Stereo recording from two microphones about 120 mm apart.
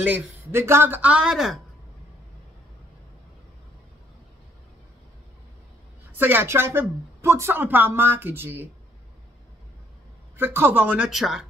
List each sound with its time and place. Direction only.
0.0 s speech: 20° right (ahead or behind); by 1.6 s centre (ahead or behind)
6.1 s speech: 15° right (ahead or behind)
10.3 s speech: 20° right (ahead or behind); by 11.4 s centre (ahead or behind)